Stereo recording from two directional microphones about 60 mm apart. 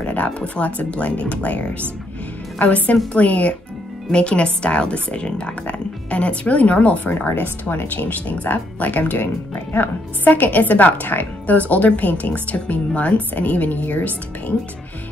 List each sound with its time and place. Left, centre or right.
0.0 s speech: left